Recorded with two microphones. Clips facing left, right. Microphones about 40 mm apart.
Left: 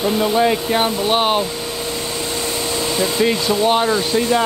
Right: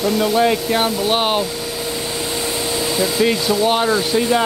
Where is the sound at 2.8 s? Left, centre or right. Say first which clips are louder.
Even; centre.